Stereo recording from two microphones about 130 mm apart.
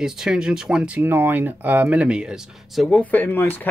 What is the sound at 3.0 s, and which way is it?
Speech, 10° left (ahead or behind).